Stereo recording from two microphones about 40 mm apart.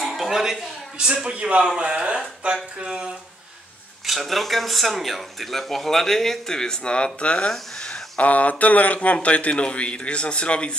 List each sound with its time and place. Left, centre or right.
0.2 s speech: centre
0.9 s a man's voice: right
4.0 s speech: centre
6.8 s speech: left
7.9 s speech: left